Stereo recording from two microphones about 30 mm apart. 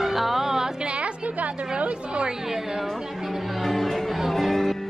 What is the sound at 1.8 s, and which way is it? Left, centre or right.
Speech, right.